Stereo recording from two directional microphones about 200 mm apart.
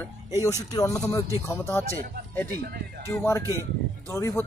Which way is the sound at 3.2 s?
15° left (ahead or behind).